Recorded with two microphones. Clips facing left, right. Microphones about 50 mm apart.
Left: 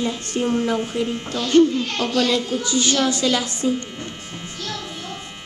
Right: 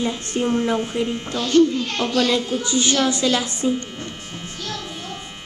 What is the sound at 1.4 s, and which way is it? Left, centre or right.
Speech, centre.